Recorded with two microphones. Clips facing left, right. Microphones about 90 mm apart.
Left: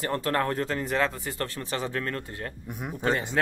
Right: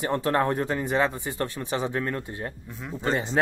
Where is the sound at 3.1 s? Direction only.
20° right (ahead or behind).